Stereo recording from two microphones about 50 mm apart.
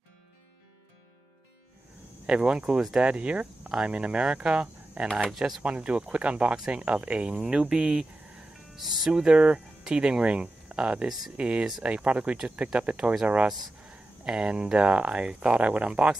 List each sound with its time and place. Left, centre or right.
2.2 s speech: right